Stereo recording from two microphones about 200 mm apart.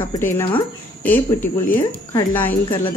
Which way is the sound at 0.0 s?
10° left (ahead or behind).